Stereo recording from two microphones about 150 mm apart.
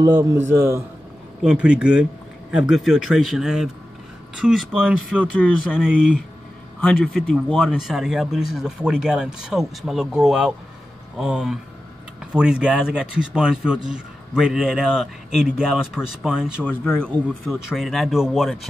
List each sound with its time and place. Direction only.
0.0 s a man's voice: 15° right (ahead or behind)
1.4 s speech: 5° right (ahead or behind)
5.3 s speech: 10° left (ahead or behind)
7.2 s speech: 10° left (ahead or behind)
7.5 s speech: 5° right (ahead or behind)
16.6 s speech: 10° left (ahead or behind)
17.5 s speech: centre (ahead or behind)